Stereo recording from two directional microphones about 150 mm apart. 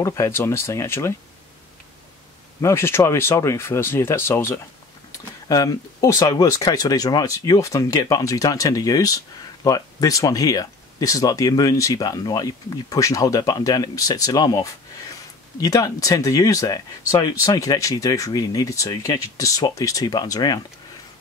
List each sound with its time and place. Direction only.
0.0 s speech: 20° left (ahead or behind)
2.6 s speech: 15° left (ahead or behind)